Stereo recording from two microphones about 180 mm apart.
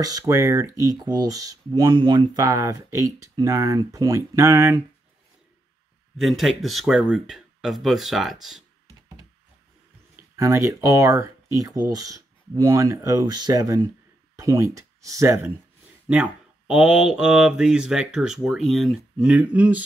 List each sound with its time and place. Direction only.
0.0 s speech: 20° right (ahead or behind)
6.1 s speech: centre (ahead or behind)
10.3 s speech: 15° right (ahead or behind)
16.1 s speech: 5° right (ahead or behind)